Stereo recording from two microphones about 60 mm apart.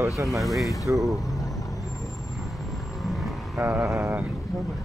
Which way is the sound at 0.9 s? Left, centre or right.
Right.